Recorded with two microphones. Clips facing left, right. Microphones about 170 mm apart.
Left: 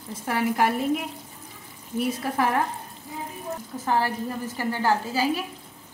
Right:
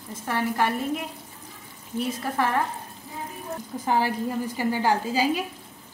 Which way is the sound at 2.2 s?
10° left (ahead or behind).